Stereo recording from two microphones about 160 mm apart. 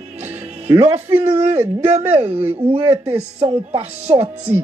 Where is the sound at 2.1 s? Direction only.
10° right (ahead or behind).